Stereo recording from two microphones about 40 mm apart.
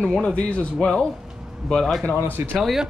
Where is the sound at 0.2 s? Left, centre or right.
Left.